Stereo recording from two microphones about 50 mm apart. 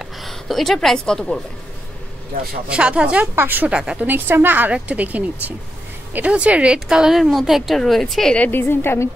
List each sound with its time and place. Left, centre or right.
0.0 s a sound: centre
0.8 s a woman's voice: centre
2.7 s speech: right
3.3 s a woman's voice: right
3.6 s speech: centre
4.0 s a woman's voice: right
4.7 s a woman's voice: right; by 7.2 s centre
7.2 s a woman's voice: centre
8.5 s a woman's voice: left